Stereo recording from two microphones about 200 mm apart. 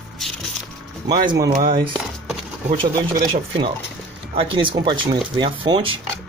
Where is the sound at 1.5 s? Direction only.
50° right (ahead or behind).